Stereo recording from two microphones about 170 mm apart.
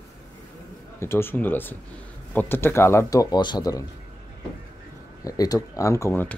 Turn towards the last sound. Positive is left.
turn(degrees=15)  # may be behind; listen again after turning